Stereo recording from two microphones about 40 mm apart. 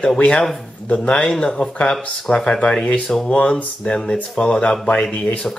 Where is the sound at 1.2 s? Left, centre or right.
Centre.